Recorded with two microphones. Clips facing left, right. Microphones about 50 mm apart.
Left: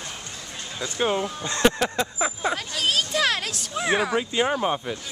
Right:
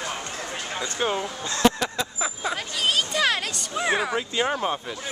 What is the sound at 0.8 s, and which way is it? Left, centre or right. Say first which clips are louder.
Speech: left 3 dB; centre.